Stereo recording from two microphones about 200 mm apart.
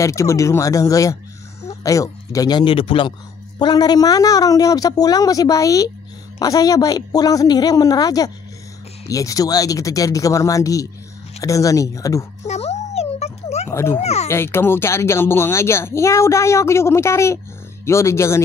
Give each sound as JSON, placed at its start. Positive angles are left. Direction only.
{"t": 0.0, "sound": "speech", "side_deg": 15}
{"t": 12.4, "sound": "a sound", "side_deg": 35}
{"t": 13.7, "sound": "a child's voice", "side_deg": 10}